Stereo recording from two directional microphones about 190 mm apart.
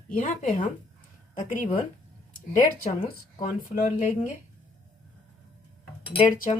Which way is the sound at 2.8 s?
25° left (ahead or behind).